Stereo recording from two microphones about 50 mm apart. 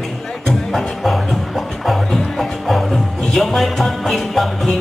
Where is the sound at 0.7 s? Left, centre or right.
Centre.